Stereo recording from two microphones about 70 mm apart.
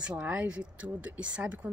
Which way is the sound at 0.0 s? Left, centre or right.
Centre.